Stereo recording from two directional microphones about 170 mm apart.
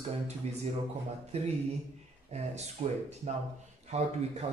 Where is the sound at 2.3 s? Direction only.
40° right (ahead or behind).